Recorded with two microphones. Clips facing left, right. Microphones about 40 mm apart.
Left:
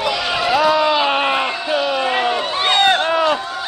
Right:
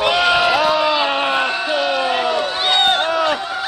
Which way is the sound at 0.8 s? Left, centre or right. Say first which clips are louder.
Left 1 dB; centre.